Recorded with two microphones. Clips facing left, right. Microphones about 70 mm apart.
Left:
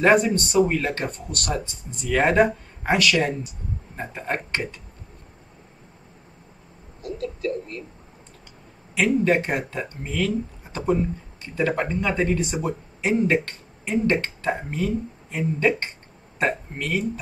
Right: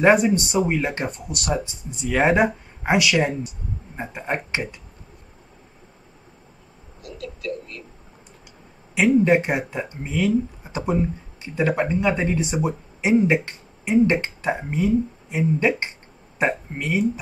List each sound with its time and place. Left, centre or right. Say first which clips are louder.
0.1 s speech: right 1 dB; centre
3.9 s speech: right 1 dB; centre
7.0 s speech: left 6 dB; left
9.2 s speech: right 3 dB; centre